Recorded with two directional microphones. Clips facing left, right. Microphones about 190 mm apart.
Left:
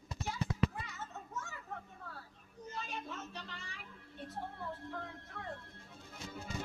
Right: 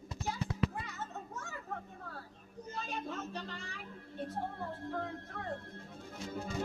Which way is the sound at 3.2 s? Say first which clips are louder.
Right 6 dB; 45° right (ahead or behind).